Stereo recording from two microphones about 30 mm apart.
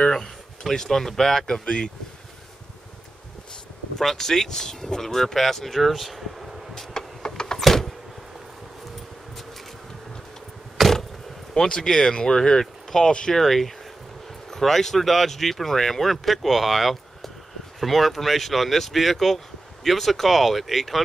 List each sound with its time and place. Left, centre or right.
0.7 s speech: centre
1.5 s speech: left
4.0 s speech: centre
5.8 s air conditioning: centre
6.7 s a sound: centre
7.6 s door: centre
10.8 s a sound: centre
11.5 s speech: centre
13.3 s speech: centre